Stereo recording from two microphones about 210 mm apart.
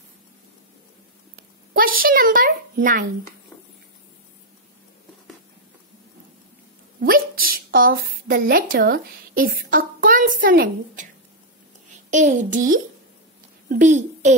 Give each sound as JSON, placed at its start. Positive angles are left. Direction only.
{"t": 1.3, "sound": "a child's voice", "side_deg": -45}
{"t": 7.0, "sound": "a sound", "side_deg": -45}
{"t": 8.1, "sound": "a woman's voice", "side_deg": -45}
{"t": 12.1, "sound": "a child's voice", "side_deg": -35}